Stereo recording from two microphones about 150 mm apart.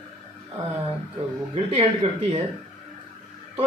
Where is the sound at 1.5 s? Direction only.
40° right (ahead or behind).